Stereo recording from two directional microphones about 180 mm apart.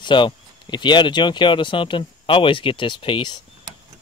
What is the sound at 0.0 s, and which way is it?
Speech, 25° left (ahead or behind).